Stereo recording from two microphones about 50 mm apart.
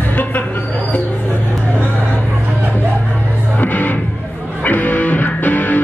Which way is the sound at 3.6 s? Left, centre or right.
Left.